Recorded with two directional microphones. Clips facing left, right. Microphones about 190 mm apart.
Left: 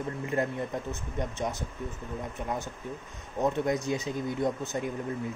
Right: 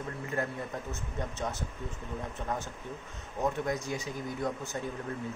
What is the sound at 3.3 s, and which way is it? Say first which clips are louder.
Speech: left 4 dB; 20° left (ahead or behind).